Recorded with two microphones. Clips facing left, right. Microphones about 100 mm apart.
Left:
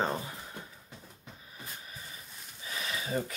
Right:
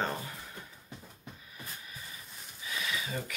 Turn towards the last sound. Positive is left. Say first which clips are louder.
# left 3 dB
turn(degrees=35)  # may be behind; listen again after turning